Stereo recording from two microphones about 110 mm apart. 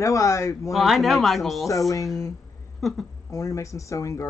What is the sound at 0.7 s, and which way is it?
Speech, centre (ahead or behind).